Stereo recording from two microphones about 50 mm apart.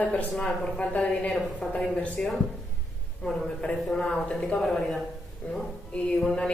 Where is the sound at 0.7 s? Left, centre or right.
Left.